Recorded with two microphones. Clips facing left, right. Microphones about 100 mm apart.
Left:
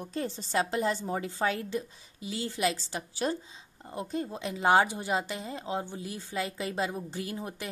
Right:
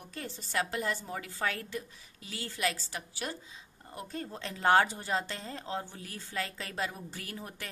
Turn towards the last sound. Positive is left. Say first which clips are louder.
# left 7 dB
turn(degrees=20)  # may be behind; listen again after turning